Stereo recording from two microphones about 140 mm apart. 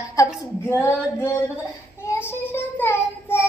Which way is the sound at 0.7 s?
15° left (ahead or behind).